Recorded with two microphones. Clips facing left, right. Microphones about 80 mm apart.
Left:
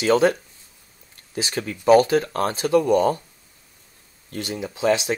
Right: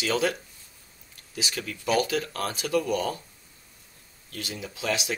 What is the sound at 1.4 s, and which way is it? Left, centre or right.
Speech, left.